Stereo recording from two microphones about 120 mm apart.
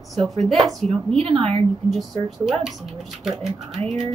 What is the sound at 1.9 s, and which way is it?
Speech, centre (ahead or behind).